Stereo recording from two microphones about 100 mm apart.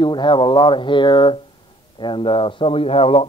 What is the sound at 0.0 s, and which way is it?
Speech, 50° left (ahead or behind).